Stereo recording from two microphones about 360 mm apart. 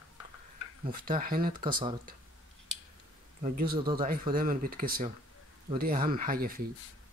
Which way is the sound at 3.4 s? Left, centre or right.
Right.